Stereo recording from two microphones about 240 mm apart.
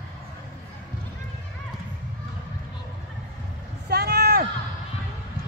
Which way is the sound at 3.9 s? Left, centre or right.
Right.